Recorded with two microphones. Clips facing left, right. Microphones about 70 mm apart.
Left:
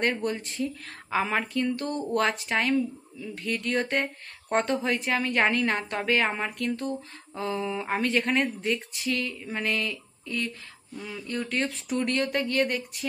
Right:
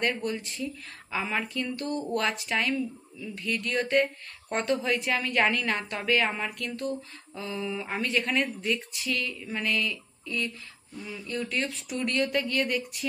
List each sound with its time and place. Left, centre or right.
0.0 s speech: left
11.0 s speech: left
11.4 s speech: left